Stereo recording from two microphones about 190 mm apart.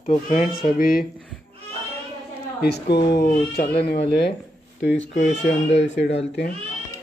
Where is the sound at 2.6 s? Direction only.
60° left (ahead or behind).